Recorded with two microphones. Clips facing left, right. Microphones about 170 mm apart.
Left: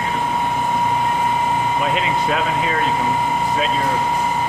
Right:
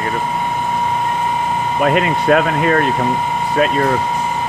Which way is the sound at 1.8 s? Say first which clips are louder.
Right 5 dB; 60° right (ahead or behind).